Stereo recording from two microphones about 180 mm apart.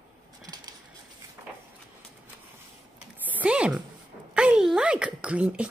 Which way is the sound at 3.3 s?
10° right (ahead or behind).